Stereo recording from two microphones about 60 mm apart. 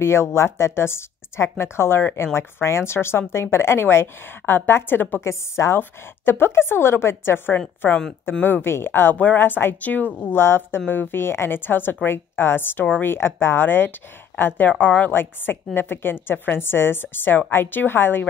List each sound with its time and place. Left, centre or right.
0.0 s a woman's voice: left
5.1 s a woman's voice: left